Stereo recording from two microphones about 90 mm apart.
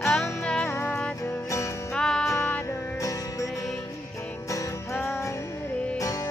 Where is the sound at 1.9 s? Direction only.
10° left (ahead or behind).